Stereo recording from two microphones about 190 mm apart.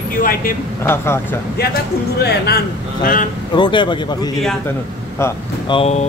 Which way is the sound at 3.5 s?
25° left (ahead or behind).